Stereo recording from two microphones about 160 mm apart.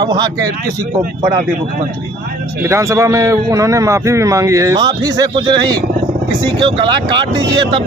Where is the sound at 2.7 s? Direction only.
20° right (ahead or behind).